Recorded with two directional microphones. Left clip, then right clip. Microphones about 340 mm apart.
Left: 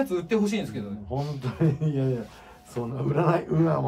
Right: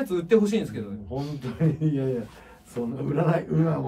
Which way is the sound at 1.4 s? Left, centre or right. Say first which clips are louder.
Right 1 dB; centre.